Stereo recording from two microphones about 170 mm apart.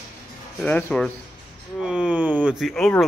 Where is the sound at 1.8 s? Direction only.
5° right (ahead or behind).